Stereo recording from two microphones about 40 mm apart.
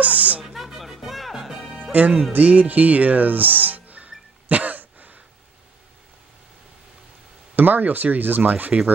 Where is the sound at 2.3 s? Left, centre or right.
Right.